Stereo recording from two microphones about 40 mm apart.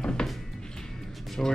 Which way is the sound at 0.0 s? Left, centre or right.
Centre.